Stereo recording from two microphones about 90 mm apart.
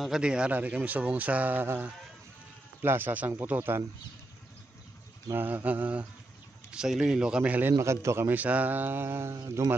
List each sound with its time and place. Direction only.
0.0 s speech: 10° right (ahead or behind)
5.3 s speech: 20° right (ahead or behind)
7.8 s speech: 30° right (ahead or behind)